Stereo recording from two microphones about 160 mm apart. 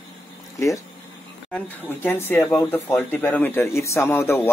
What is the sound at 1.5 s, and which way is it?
Speech, 15° left (ahead or behind).